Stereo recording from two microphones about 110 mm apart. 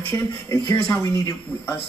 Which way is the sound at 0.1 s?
30° left (ahead or behind).